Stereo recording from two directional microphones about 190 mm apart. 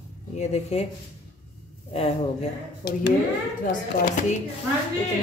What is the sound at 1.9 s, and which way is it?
Speech, 30° left (ahead or behind).